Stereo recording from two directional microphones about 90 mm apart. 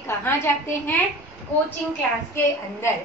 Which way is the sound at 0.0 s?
25° left (ahead or behind).